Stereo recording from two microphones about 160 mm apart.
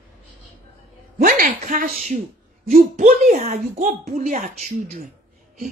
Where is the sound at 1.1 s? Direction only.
60° right (ahead or behind).